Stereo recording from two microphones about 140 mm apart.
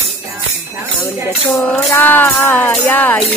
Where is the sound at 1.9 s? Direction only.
15° left (ahead or behind).